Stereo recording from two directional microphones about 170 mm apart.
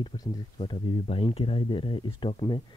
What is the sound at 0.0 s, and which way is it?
Speech, 25° left (ahead or behind).